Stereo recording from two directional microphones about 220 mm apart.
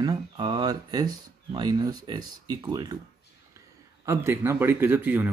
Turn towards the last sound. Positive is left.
turn(degrees=-10)  # may be behind; listen again after turning